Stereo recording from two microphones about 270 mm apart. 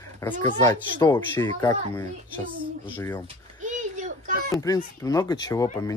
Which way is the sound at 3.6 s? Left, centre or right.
Right.